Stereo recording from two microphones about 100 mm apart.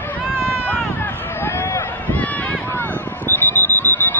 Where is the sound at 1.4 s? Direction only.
25° left (ahead or behind).